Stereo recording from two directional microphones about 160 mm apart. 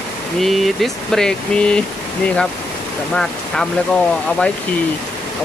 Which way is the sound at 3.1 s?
5° left (ahead or behind).